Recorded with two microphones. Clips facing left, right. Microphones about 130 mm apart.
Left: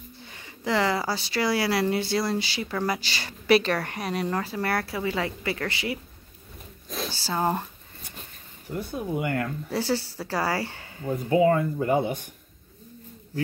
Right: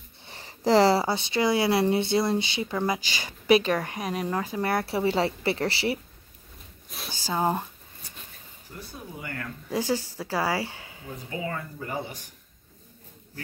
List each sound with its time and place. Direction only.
0.2 s speech: 35° right (ahead or behind)
7.1 s speech: 15° right (ahead or behind)
8.6 s speech: 60° left (ahead or behind)
9.7 s speech: 15° right (ahead or behind)
11.4 s speech: 40° left (ahead or behind)
11.9 s speech: 55° left (ahead or behind)